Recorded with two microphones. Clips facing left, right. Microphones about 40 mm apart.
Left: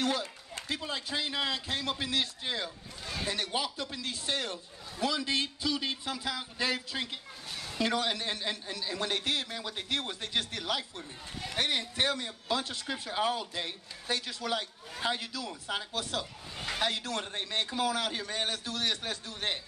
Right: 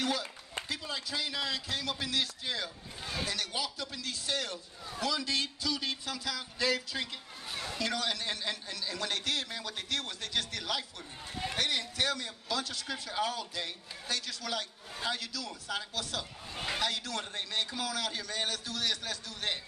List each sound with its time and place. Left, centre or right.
0.7 s a man's voice: left
16.5 s speech: centre
16.8 s a man's voice: left